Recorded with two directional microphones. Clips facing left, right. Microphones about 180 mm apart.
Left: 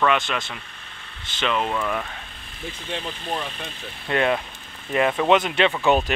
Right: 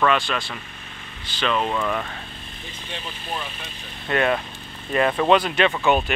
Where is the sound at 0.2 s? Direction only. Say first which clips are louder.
Right 1 dB; 20° left (ahead or behind).